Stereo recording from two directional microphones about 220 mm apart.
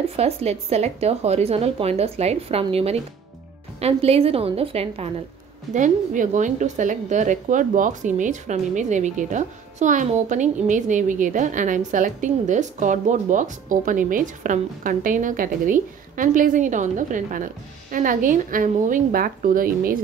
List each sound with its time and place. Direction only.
0.1 s speech: 30° right (ahead or behind)